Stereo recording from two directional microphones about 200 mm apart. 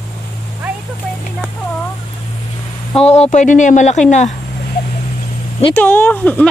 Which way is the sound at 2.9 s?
30° left (ahead or behind).